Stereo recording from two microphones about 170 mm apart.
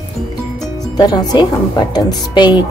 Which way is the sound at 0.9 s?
25° left (ahead or behind).